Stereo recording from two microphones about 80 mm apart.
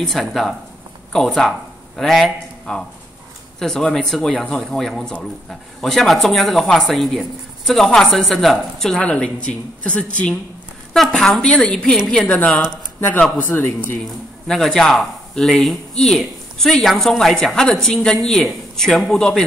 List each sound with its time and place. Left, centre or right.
0.0 s a woman's voice: centre
13.4 s speech: left
14.5 s a woman's voice: centre